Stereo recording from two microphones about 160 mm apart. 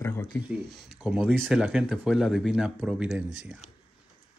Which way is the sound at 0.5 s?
Centre (ahead or behind).